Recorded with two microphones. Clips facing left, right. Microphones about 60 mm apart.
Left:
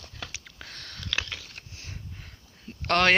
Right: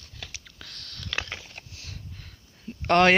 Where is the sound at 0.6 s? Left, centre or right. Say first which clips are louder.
Left 2 dB; left.